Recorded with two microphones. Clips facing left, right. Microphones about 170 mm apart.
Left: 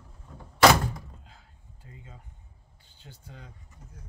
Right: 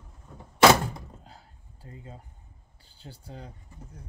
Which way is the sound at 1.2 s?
40° right (ahead or behind).